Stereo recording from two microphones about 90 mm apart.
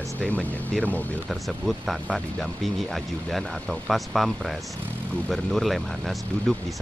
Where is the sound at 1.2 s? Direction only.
Centre (ahead or behind).